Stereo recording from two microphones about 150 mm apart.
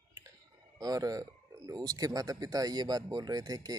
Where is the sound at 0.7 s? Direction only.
25° right (ahead or behind).